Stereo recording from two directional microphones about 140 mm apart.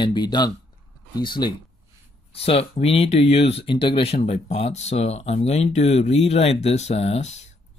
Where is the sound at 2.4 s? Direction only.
45° left (ahead or behind).